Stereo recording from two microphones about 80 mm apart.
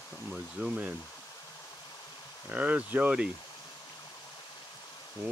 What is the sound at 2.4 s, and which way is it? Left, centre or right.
Speech, centre.